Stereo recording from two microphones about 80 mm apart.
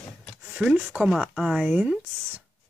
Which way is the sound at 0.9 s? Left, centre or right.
Left.